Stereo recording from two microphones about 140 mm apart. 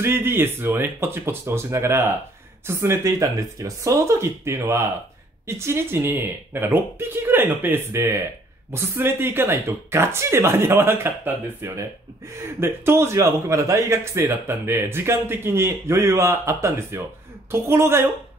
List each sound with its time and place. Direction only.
0.0 s a man's voice: 15° right (ahead or behind)